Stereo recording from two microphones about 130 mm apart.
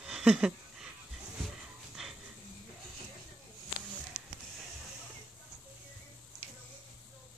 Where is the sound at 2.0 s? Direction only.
5° right (ahead or behind).